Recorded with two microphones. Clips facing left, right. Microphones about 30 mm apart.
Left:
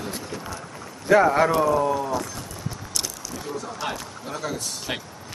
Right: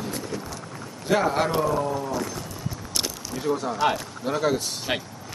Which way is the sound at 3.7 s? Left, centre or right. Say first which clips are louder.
Right 7 dB; centre.